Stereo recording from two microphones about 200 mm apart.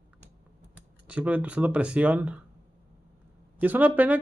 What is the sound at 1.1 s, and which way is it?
Speech, 5° right (ahead or behind).